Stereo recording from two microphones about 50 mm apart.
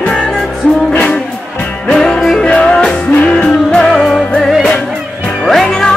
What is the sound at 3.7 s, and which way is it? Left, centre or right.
Music, centre.